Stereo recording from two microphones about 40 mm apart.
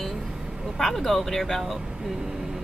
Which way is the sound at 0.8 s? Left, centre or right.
Centre.